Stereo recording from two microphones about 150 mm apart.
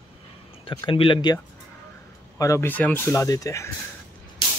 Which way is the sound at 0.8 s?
35° left (ahead or behind).